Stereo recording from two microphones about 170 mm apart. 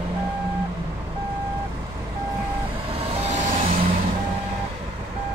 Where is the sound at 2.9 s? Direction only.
40° right (ahead or behind).